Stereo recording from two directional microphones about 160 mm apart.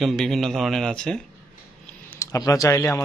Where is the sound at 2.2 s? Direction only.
20° left (ahead or behind).